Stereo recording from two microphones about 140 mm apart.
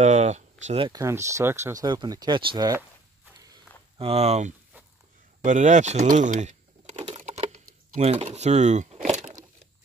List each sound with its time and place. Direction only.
0.0 s speech: 60° right (ahead or behind)
0.9 s speech: 20° right (ahead or behind)
4.0 s speech: 45° right (ahead or behind)
7.2 s a sound: 50° right (ahead or behind)
8.0 s speech: 50° right (ahead or behind)
9.1 s a sound: 60° right (ahead or behind)